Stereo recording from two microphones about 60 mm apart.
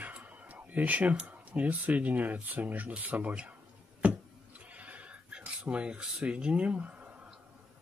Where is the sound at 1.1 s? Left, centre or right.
Right.